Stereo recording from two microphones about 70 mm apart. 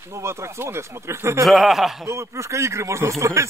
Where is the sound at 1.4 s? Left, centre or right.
Centre.